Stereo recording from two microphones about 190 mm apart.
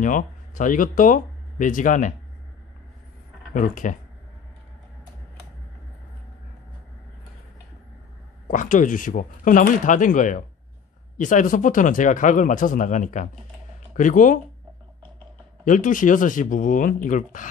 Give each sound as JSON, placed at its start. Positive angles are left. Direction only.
{"t": 0.0, "sound": "speech", "side_deg": 45}
{"t": 3.5, "sound": "speech", "side_deg": 45}
{"t": 8.5, "sound": "speech", "side_deg": 45}
{"t": 15.6, "sound": "speech", "side_deg": 45}